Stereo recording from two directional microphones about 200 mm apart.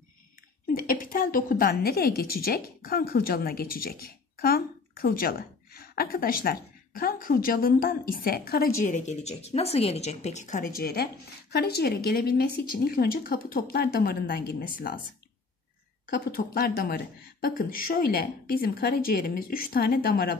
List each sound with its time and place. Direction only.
0.7 s a woman's voice: 45° left (ahead or behind)
16.1 s a woman's voice: 50° left (ahead or behind)